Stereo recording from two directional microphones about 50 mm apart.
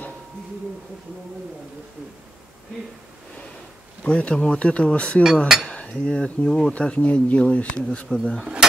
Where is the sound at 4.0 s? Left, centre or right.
Left.